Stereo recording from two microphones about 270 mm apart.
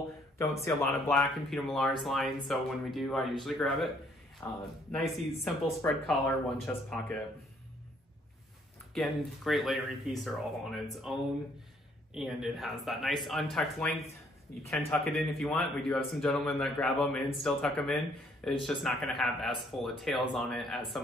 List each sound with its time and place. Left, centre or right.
0.4 s speech: centre
8.9 s speech: centre